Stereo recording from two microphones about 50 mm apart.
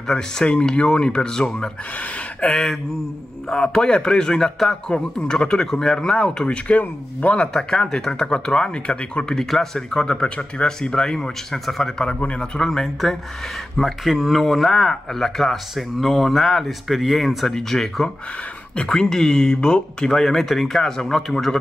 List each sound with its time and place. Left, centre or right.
0.1 s a man's voice: centre
7.5 s a man's voice: centre
12.6 s a man's voice: centre